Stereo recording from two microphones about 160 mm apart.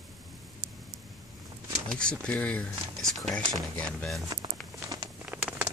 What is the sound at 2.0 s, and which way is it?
Speech, 5° left (ahead or behind).